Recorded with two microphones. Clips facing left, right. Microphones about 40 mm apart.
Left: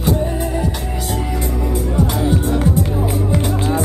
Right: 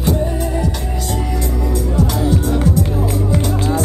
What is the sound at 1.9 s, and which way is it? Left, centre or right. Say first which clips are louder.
Music: even; left.